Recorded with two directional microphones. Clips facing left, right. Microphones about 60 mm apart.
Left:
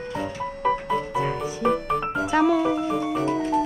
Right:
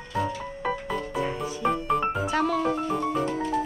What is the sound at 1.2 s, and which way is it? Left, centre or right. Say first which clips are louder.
Music: left 3 dB; centre.